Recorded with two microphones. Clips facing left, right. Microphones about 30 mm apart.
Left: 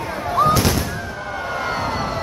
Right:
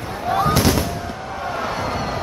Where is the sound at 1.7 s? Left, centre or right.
Centre.